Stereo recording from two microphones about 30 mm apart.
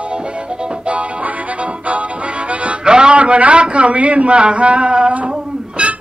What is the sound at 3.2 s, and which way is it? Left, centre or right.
A man's voice, right.